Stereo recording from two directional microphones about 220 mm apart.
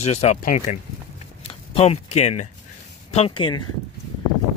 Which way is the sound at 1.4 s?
25° left (ahead or behind).